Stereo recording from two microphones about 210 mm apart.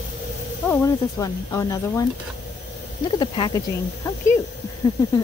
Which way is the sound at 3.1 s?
20° left (ahead or behind).